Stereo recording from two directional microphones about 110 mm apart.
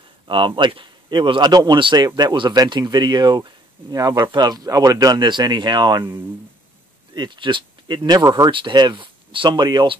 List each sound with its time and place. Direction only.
0.3 s speech: 45° right (ahead or behind)
7.2 s speech: 45° right (ahead or behind)
8.5 s speech: 50° right (ahead or behind)